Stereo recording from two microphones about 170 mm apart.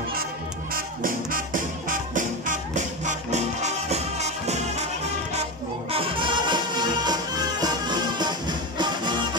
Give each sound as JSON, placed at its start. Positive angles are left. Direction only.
{"t": 0.7, "sound": "music", "side_deg": -55}
{"t": 5.9, "sound": "music", "side_deg": -30}